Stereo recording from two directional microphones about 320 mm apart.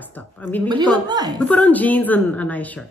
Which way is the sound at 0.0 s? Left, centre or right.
Centre.